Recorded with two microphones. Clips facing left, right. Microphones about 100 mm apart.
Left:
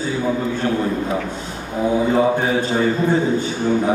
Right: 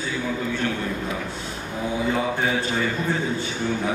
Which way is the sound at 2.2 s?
30° left (ahead or behind).